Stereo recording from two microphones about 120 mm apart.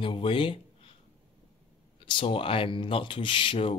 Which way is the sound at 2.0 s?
45° left (ahead or behind).